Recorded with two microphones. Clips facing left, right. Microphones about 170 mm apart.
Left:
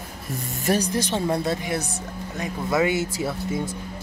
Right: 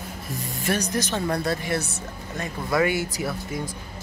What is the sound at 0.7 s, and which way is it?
Speech, 30° left (ahead or behind).